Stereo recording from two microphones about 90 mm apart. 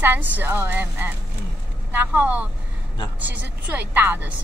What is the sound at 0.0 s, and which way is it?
Speech, 20° right (ahead or behind).